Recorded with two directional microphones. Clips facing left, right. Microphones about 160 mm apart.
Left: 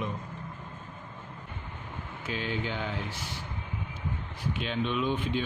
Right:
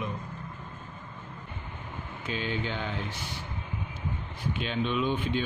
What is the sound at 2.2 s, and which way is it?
Speech, 5° left (ahead or behind).